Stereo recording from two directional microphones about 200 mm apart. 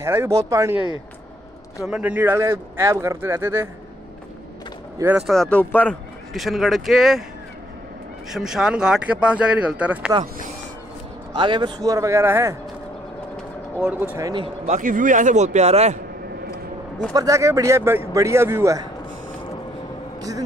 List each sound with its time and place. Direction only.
0.0 s speech: 10° right (ahead or behind)
1.9 s speech: 5° right (ahead or behind)
4.9 s a man's voice: 10° right (ahead or behind)
8.3 s a man's voice: centre (ahead or behind)
11.3 s speech: 25° right (ahead or behind)
13.7 s speech: 5° right (ahead or behind); by 14.8 s 25° right (ahead or behind)
14.8 s a man's voice: 40° right (ahead or behind)
17.1 s speech: 15° right (ahead or behind)
20.2 s a sound: 15° right (ahead or behind)